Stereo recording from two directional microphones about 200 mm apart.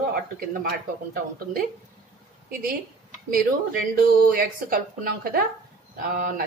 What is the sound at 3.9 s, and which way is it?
Speech, 45° right (ahead or behind).